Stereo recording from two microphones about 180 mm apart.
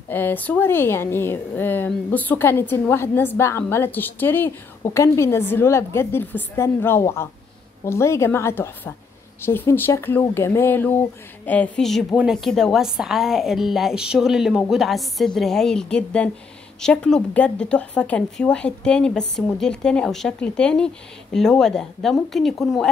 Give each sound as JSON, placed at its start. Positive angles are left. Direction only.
{"t": 0.1, "sound": "a woman's voice", "side_deg": 10}